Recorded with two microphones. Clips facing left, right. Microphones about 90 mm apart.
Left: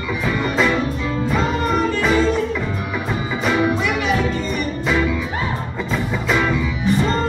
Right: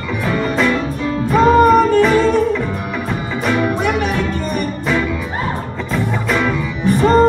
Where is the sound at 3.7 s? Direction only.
50° right (ahead or behind).